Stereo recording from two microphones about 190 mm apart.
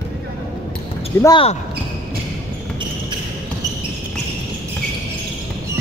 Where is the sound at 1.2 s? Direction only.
20° left (ahead or behind).